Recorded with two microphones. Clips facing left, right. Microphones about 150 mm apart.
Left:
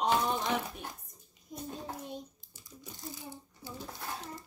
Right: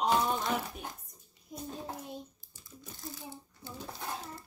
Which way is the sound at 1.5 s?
Centre (ahead or behind).